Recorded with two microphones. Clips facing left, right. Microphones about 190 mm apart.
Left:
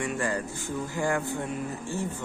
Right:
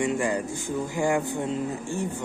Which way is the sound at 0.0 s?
15° right (ahead or behind).